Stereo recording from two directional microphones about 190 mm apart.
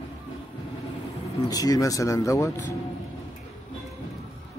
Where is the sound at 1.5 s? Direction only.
20° left (ahead or behind).